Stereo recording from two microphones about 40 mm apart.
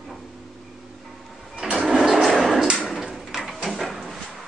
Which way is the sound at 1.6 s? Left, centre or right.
Right.